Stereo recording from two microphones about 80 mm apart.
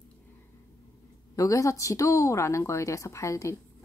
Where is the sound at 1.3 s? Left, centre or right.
Left.